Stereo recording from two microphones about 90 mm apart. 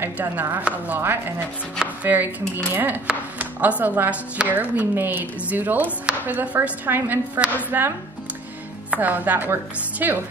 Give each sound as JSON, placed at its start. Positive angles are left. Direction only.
{"t": 0.0, "sound": "a woman's voice", "side_deg": -20}
{"t": 8.9, "sound": "speech", "side_deg": -20}